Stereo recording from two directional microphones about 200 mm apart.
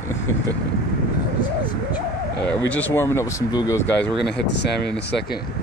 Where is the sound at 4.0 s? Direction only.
60° left (ahead or behind).